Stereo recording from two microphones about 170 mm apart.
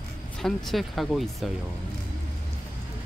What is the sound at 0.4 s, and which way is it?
Speech, centre (ahead or behind).